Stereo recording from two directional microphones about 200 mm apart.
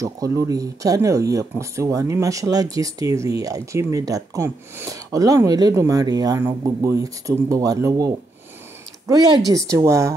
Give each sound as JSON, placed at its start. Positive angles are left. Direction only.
{"t": 0.0, "sound": "speech", "side_deg": -15}